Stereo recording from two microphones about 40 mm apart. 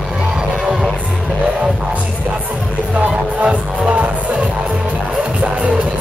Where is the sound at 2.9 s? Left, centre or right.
Right.